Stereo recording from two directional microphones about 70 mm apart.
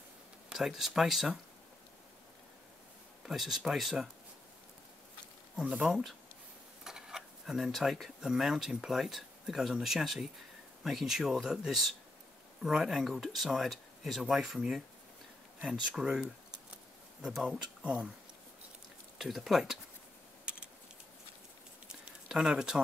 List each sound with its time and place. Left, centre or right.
0.5 s speech: centre
3.3 s speech: centre
5.6 s speech: centre
17.8 s speech: centre
19.1 s speech: centre
21.8 s a sound: centre